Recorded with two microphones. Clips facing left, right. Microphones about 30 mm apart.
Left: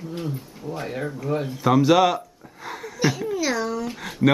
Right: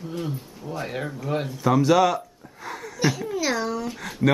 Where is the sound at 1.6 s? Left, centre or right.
Centre.